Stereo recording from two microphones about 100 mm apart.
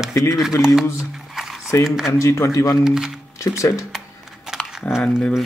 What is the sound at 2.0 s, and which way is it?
Speech, 30° left (ahead or behind).